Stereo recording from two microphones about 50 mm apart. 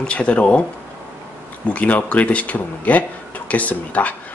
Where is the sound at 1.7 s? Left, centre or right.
Left.